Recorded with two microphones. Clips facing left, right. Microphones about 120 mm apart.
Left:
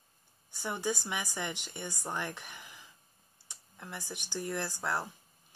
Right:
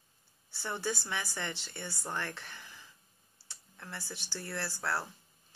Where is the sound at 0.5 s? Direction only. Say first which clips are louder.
Left 2 dB; 15° left (ahead or behind).